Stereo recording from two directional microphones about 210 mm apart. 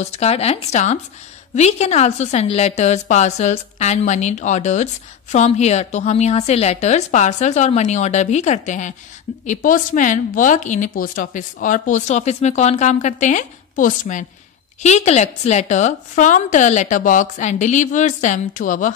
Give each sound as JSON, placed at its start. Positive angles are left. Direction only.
{"t": 0.0, "sound": "a woman's voice", "side_deg": 30}